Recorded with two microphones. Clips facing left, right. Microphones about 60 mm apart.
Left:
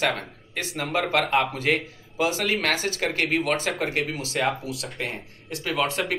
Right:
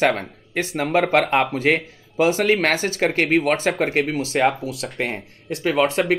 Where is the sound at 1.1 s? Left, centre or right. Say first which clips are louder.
Right 4 dB; right.